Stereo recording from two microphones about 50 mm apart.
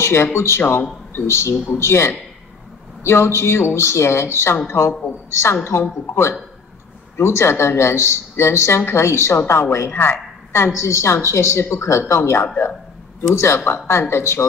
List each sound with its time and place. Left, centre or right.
0.0 s a woman's voice: left
9.5 s a woman's voice: left
13.3 s speech: left
13.7 s a woman's voice: left